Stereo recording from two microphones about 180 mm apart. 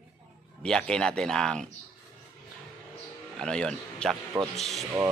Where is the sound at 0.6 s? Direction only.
5° left (ahead or behind).